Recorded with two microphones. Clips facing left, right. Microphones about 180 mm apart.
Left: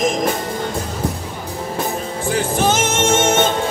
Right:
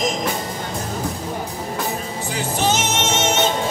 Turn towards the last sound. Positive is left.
turn(degrees=50)  # may be behind; listen again after turning